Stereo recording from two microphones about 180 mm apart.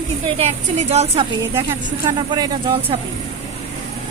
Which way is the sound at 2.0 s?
25° right (ahead or behind).